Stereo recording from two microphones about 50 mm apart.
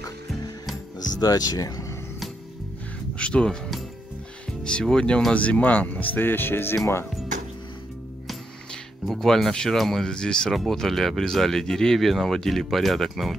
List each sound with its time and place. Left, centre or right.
3.2 s speech: left
4.6 s speech: centre; by 7.1 s left
9.0 s speech: centre
10.5 s speech: centre